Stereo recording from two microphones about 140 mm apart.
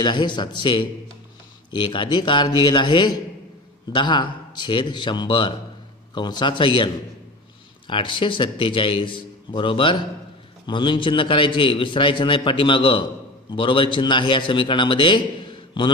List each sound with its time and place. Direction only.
0.0 s a man's voice: 30° left (ahead or behind)
7.9 s a man's voice: 35° left (ahead or behind)